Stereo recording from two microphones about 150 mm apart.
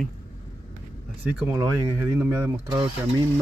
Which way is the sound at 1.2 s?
10° right (ahead or behind).